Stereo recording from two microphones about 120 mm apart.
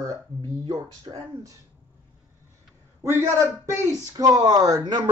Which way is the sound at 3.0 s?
25° right (ahead or behind).